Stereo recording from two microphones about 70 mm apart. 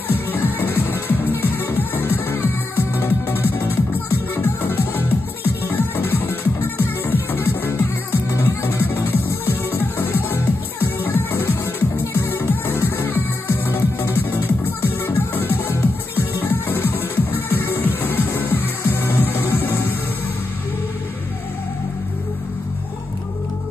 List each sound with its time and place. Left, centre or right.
0.1 s music: left